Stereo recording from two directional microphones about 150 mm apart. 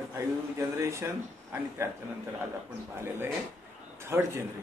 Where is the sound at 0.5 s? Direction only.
20° right (ahead or behind).